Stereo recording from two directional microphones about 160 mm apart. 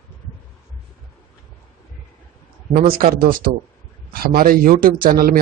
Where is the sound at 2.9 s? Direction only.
65° right (ahead or behind).